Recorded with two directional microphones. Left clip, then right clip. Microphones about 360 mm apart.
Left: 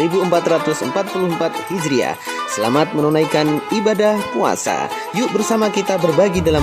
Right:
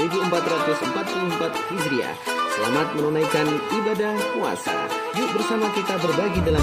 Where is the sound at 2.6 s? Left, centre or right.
Left.